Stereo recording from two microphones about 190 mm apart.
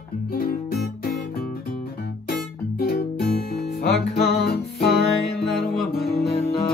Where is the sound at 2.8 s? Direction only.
50° left (ahead or behind).